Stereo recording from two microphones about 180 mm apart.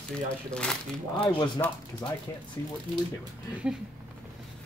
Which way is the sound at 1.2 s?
25° left (ahead or behind).